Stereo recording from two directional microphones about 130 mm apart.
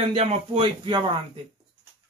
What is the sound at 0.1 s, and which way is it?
Speech, 50° right (ahead or behind).